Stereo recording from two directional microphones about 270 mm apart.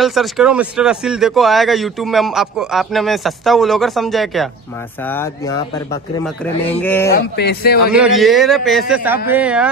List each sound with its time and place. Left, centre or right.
0.0 s speech: centre
7.2 s a man's voice: left
7.9 s speech: centre